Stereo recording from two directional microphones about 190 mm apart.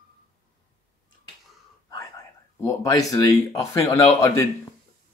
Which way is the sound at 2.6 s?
20° left (ahead or behind).